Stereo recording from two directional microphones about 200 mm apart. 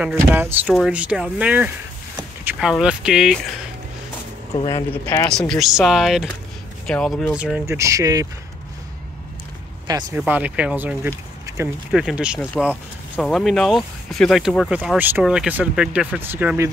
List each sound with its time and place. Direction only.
0.0 s speech: 10° right (ahead or behind)
4.6 s speech: 20° left (ahead or behind)
5.5 s speech: centre (ahead or behind); by 8.3 s 15° right (ahead or behind)
9.8 s speech: 20° right (ahead or behind)
10.1 s speech: 10° right (ahead or behind)